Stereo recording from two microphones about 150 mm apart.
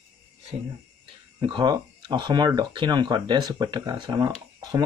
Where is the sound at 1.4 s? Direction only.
30° right (ahead or behind).